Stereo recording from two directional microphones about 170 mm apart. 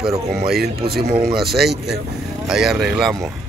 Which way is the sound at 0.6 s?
65° right (ahead or behind).